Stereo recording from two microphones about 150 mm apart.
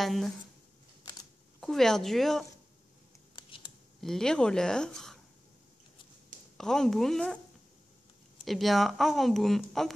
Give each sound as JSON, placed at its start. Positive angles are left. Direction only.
{"t": 0.0, "sound": "speech", "side_deg": 0}
{"t": 1.6, "sound": "speech", "side_deg": 0}
{"t": 3.3, "sound": "computer keyboard", "side_deg": 30}
{"t": 4.0, "sound": "speech", "side_deg": 5}
{"t": 6.6, "sound": "speech", "side_deg": 5}
{"t": 8.5, "sound": "speech", "side_deg": 0}